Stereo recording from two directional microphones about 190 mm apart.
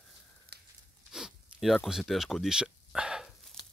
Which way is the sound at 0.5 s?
60° right (ahead or behind).